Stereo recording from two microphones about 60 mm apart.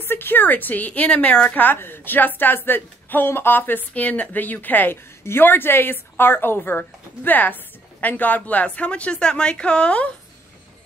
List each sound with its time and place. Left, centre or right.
0.0 s speech: left; by 1.6 s centre
1.6 s a woman's voice: left; by 10.0 s centre